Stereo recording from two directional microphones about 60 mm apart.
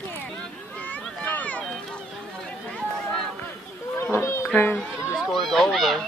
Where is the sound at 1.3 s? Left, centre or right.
Left.